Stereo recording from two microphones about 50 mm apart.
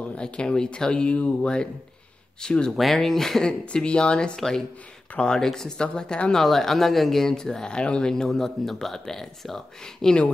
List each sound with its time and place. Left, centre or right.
0.1 s speech: centre
2.7 s speech: centre
3.7 s speech: centre
6.4 s speech: centre